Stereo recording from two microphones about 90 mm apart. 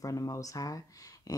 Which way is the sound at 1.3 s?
40° left (ahead or behind).